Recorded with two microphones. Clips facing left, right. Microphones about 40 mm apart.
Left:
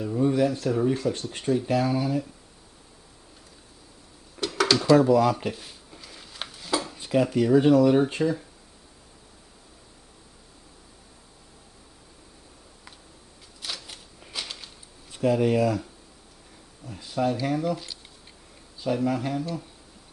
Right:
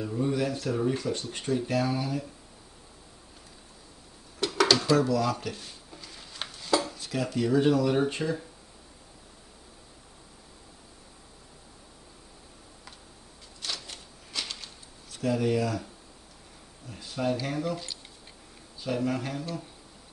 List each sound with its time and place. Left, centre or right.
0.0 s speech: centre
4.4 s a sound: centre
4.9 s speech: left
5.5 s a sound: centre
7.0 s speech: left; by 8.5 s centre
13.6 s a sound: centre
15.0 s speech: left
16.9 s speech: centre
18.9 s speech: centre